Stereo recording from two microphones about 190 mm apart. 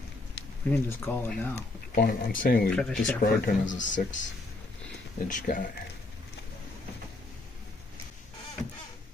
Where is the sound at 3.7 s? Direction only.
40° left (ahead or behind).